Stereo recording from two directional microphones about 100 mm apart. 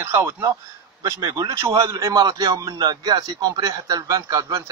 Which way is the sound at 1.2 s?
40° right (ahead or behind).